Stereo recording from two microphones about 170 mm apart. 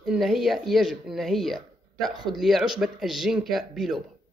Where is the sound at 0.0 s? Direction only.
Centre (ahead or behind).